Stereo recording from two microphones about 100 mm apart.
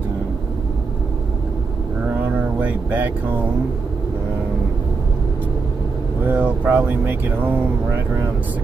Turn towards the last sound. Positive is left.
turn(degrees=-20)  # may be behind; listen again after turning